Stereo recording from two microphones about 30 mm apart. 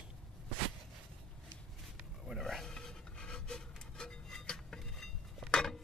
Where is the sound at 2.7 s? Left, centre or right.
Left.